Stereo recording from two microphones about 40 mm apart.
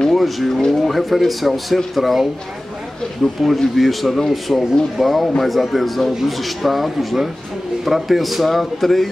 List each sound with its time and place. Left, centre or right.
0.1 s speech: centre
3.4 s speech: centre